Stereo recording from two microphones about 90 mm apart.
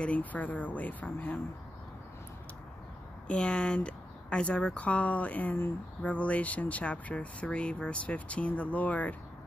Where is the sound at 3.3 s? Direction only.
10° left (ahead or behind).